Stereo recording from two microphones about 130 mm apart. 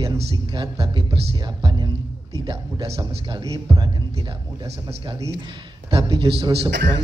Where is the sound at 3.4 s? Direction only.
30° right (ahead or behind).